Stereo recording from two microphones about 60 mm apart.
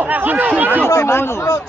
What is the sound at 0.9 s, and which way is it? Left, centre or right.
Speech, left.